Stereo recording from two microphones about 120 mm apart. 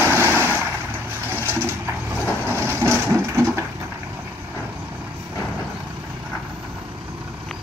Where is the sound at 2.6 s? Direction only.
20° right (ahead or behind).